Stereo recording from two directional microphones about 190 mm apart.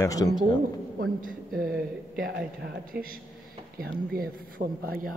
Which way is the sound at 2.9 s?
50° right (ahead or behind).